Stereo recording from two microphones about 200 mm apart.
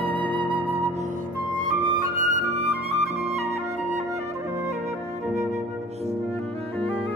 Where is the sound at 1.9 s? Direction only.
40° right (ahead or behind).